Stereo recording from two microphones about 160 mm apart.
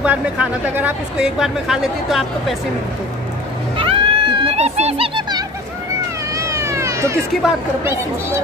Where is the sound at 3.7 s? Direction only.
30° right (ahead or behind).